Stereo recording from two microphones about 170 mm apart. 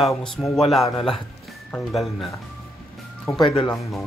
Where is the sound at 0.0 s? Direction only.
Centre (ahead or behind).